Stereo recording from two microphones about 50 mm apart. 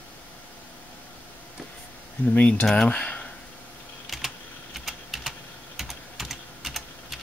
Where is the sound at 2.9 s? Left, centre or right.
Left.